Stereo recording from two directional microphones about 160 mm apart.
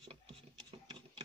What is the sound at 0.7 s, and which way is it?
Sewing machine, 30° right (ahead or behind).